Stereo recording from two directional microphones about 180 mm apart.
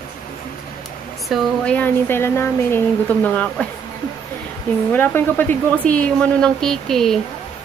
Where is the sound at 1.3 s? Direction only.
5° left (ahead or behind).